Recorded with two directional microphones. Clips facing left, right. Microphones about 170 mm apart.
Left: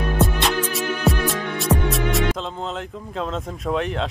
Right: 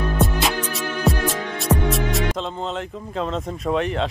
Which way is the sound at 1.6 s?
Centre (ahead or behind).